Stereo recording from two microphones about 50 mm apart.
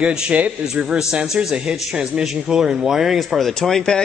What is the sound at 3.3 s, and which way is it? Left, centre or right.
Speech, centre.